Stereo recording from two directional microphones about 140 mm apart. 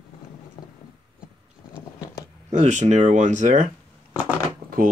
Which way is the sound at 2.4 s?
60° right (ahead or behind).